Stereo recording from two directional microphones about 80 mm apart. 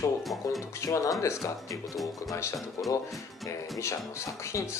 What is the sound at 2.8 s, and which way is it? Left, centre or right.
Speech, left.